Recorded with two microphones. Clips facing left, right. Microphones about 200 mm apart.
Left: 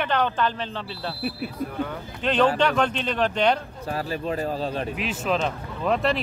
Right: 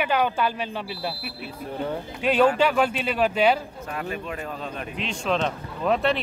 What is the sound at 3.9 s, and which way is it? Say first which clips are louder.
Speech: left 4 dB; 35° left (ahead or behind).